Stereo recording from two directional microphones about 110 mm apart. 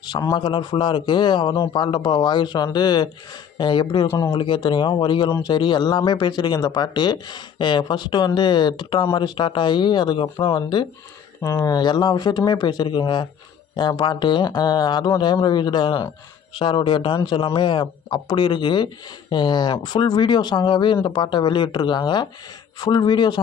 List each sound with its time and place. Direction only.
0.2 s a man's voice: 40° left (ahead or behind)
11.4 s a man's voice: 30° left (ahead or behind)